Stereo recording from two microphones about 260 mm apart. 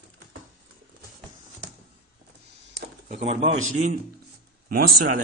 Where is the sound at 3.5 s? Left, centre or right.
Right.